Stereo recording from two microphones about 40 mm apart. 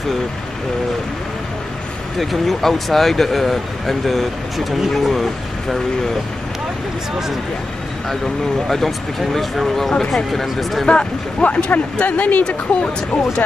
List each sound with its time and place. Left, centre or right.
2.1 s speech: centre
8.6 s speech: centre
10.4 s speech: centre
10.9 s speech: left
12.4 s speech: left